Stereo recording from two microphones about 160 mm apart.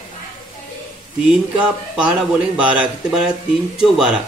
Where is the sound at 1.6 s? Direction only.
5° right (ahead or behind).